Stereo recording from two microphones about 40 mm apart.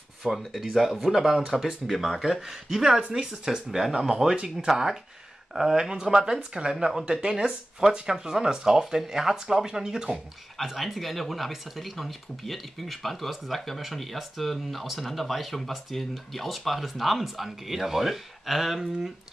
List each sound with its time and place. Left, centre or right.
0.2 s speech: centre
3.0 s speech: right
10.6 s speech: centre